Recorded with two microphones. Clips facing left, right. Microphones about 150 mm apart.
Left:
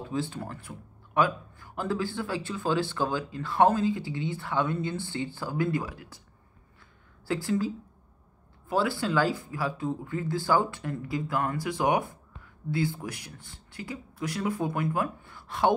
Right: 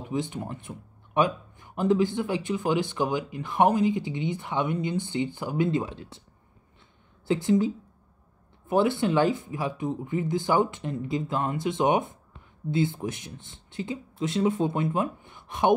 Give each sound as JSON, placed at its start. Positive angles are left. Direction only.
{"t": 0.0, "sound": "speech", "side_deg": -20}
{"t": 7.2, "sound": "speech", "side_deg": -20}